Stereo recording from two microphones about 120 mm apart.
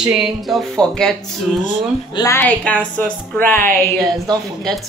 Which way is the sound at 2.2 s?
40° left (ahead or behind).